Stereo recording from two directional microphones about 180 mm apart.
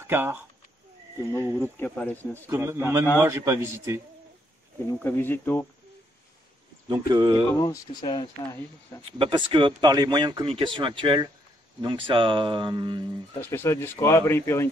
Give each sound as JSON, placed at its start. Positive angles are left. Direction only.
{"t": 0.0, "sound": "speech", "side_deg": -10}
{"t": 1.6, "sound": "speech", "side_deg": 10}
{"t": 2.3, "sound": "a man's voice", "side_deg": -15}
{"t": 4.9, "sound": "speech", "side_deg": 10}
{"t": 6.9, "sound": "speech", "side_deg": -20}
{"t": 7.5, "sound": "speech", "side_deg": 20}
{"t": 9.2, "sound": "speech", "side_deg": -25}
{"t": 13.4, "sound": "speech", "side_deg": 15}